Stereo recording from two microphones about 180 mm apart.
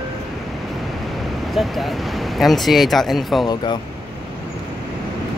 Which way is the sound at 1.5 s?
Centre (ahead or behind).